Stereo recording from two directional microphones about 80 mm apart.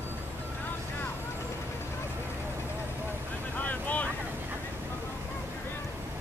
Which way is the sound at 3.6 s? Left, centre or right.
Centre.